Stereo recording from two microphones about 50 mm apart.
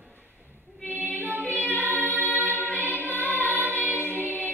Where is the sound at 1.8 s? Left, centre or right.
Right.